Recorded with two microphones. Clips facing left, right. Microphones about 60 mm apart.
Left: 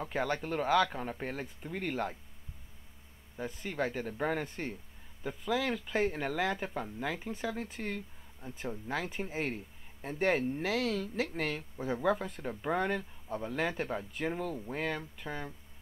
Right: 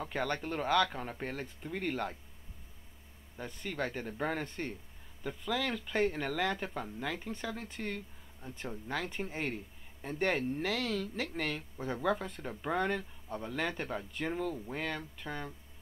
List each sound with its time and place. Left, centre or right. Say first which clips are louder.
0.0 s speech: left 2 dB; centre
3.3 s speech: left 2 dB; centre